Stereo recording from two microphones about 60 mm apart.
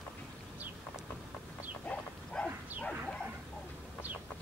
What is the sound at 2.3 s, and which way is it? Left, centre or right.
Bow-wow, centre.